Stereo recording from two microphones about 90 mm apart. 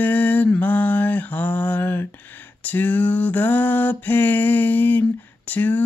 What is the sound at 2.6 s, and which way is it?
Mantra, 20° left (ahead or behind).